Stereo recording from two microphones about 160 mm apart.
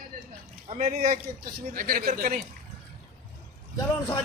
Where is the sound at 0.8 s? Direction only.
50° right (ahead or behind).